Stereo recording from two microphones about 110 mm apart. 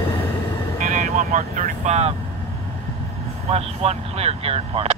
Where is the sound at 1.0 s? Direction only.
90° right.